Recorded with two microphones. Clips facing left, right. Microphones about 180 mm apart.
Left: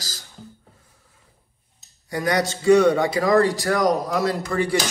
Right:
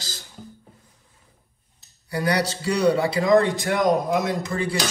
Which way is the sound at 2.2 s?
30° right (ahead or behind).